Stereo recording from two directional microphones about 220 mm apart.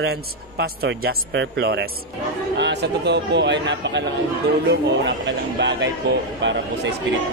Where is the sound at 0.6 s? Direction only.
50° right (ahead or behind).